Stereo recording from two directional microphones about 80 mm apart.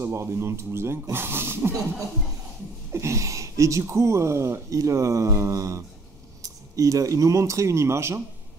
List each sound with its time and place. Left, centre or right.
0.0 s speech: right
2.9 s speech: right